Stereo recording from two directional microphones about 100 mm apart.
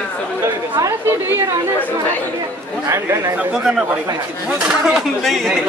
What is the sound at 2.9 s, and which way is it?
Speech, 30° right (ahead or behind).